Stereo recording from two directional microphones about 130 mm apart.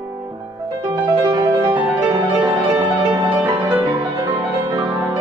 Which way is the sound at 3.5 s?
35° right (ahead or behind).